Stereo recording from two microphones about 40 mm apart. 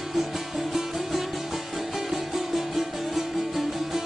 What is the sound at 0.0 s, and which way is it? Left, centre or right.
Music, centre.